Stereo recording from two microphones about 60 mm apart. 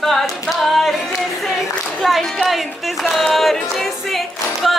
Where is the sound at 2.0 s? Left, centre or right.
Centre.